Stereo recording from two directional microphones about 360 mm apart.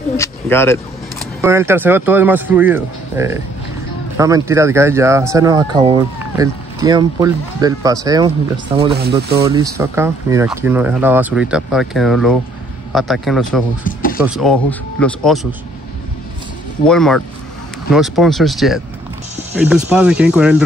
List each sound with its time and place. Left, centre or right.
0.2 s speech: centre
1.4 s speech: centre
13.8 s a sound: left
14.2 s speech: centre
16.8 s speech: centre